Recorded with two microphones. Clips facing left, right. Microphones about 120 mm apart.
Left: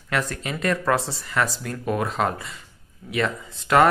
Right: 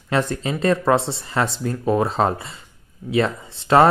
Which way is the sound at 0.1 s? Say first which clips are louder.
Right 5 dB; 25° right (ahead or behind).